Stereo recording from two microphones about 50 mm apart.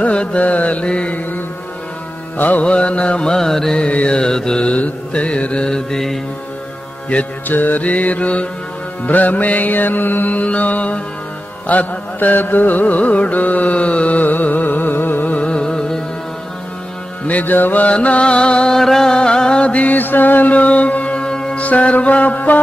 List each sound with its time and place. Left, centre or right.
0.0 s mantra: left
2.3 s music: left
2.6 s mantra: left
3.7 s mantra: left
7.4 s music: left
15.3 s music: left
17.3 s mantra: left; by 18.8 s centre
18.8 s music: centre
21.5 s music: left